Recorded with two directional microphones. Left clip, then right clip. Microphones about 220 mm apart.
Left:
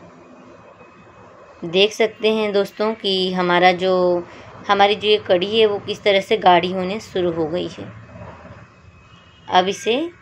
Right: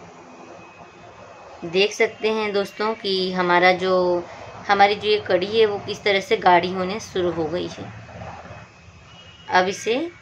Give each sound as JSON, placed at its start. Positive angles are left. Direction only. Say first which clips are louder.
{"t": 1.7, "sound": "a woman's voice", "louder": "left 3 dB", "side_deg": 15}
{"t": 9.5, "sound": "a woman's voice", "louder": "left 2 dB", "side_deg": 10}